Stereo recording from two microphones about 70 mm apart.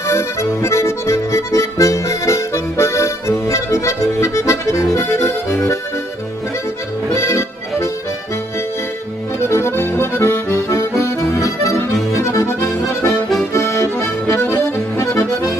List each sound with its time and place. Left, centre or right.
0.0 s accordion: left
7.1 s accordion: left
9.5 s accordion: left
15.0 s accordion: left